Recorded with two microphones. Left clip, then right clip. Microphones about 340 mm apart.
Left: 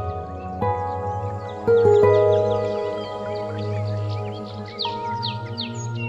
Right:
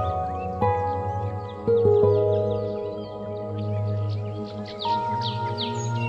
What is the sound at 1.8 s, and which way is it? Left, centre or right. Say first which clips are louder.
Music: left 4 dB; left.